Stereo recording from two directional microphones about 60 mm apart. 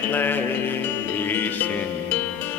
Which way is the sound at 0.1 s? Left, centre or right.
Left.